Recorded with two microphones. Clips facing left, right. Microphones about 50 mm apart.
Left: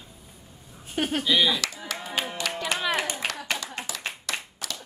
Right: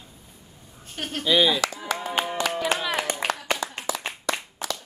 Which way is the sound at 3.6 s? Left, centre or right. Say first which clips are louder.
Right 7 dB; right.